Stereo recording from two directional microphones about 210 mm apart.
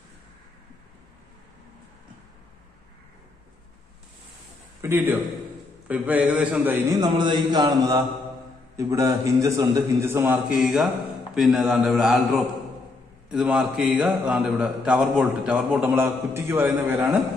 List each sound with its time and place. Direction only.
4.8 s a man's voice: 10° right (ahead or behind)
7.0 s mantra: 20° right (ahead or behind)
8.7 s a man's voice: 15° right (ahead or behind)